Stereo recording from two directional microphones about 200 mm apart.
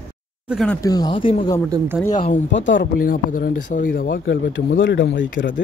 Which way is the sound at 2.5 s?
65° left (ahead or behind).